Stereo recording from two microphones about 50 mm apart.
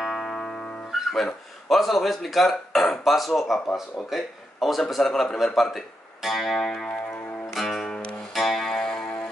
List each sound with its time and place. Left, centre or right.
0.0 s music: centre
1.1 s speech: centre
6.9 s music: left
7.5 s music: centre